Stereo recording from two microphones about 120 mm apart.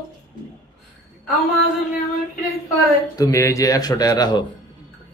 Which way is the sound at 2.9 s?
30° left (ahead or behind).